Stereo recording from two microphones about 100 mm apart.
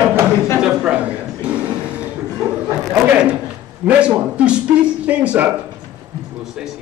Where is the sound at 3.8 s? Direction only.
15° right (ahead or behind).